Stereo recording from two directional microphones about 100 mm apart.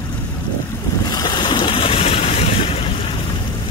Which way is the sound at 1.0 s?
45° left (ahead or behind).